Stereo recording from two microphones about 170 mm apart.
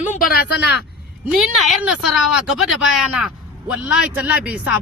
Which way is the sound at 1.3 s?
Centre (ahead or behind).